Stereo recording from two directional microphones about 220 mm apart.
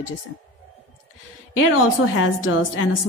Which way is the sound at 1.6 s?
70° left (ahead or behind).